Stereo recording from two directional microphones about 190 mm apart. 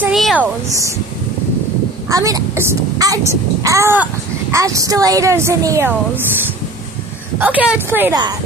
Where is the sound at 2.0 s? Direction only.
15° right (ahead or behind).